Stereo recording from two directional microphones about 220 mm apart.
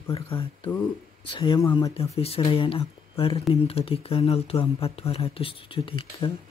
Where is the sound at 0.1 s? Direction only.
25° left (ahead or behind).